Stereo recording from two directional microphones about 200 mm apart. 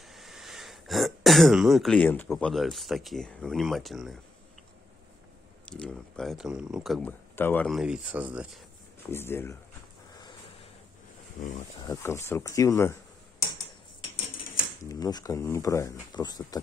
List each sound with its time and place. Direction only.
0.0 s throat clearing: centre (ahead or behind)
2.2 s speech: centre (ahead or behind)
5.7 s speech: 5° left (ahead or behind)
9.1 s speech: 10° left (ahead or behind)
11.8 s speech: 15° left (ahead or behind)
14.9 s speech: 20° left (ahead or behind)